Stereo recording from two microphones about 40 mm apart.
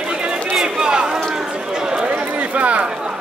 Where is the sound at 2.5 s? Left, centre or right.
Right.